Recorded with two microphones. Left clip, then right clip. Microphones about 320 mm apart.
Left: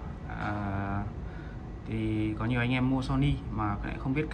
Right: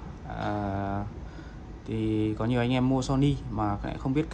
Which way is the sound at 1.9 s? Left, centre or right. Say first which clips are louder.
Right 4 dB; centre.